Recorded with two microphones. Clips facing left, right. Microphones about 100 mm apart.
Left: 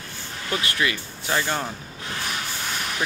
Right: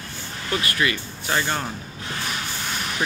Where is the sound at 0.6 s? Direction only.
15° left (ahead or behind).